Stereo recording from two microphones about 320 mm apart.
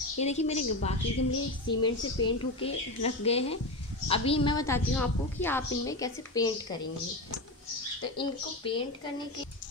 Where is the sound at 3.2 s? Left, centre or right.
Centre.